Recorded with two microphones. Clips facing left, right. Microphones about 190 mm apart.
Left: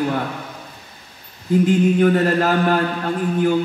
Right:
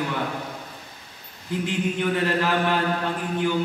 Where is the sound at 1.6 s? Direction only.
45° left (ahead or behind).